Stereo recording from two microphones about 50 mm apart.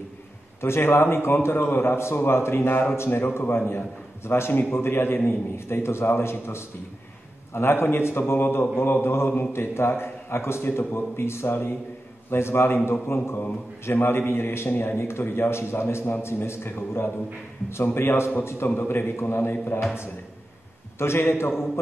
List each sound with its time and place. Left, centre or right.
0.6 s a man's voice: left
2.1 s mantra: left
3.0 s a man's voice: left
7.5 s a man's voice: left
8.3 s mantra: left
9.5 s a man's voice: left
19.4 s mantra: left
21.0 s a man's voice: left